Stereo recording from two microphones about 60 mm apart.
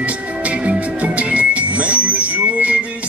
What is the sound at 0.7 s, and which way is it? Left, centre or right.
Music, right.